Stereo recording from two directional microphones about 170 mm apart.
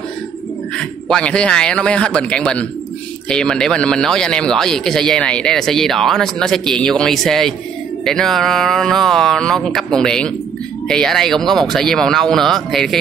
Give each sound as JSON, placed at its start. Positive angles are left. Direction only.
{"t": 0.7, "sound": "a man's voice", "side_deg": 5}